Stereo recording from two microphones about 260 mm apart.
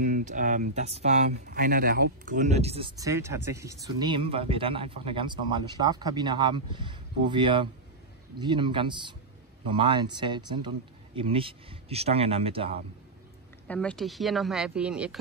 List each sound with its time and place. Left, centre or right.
0.0 s speech: right
13.7 s a woman's voice: centre